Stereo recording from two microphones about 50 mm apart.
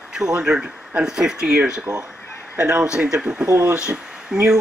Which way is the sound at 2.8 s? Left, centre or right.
Centre.